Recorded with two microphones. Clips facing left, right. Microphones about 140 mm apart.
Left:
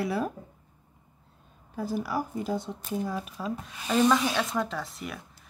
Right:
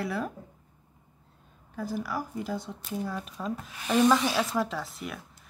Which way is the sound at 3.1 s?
5° left (ahead or behind).